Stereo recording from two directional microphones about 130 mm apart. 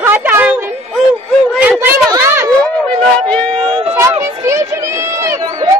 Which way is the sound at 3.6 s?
45° right (ahead or behind).